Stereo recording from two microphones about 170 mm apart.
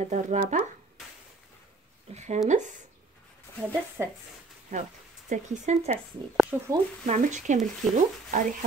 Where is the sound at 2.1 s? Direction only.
40° right (ahead or behind).